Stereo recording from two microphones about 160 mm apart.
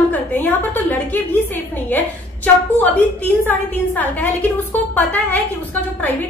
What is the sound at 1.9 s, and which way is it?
A woman's voice, 10° left (ahead or behind).